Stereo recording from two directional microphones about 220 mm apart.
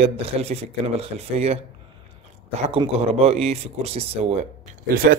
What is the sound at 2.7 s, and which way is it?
Speech, 25° right (ahead or behind).